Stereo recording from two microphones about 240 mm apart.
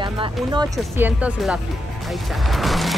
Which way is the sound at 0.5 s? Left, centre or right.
Centre.